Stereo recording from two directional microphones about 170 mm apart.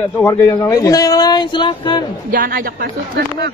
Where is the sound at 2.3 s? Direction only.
55° right (ahead or behind).